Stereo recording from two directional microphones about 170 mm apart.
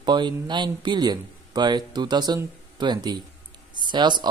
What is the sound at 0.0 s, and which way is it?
Speech, 25° right (ahead or behind).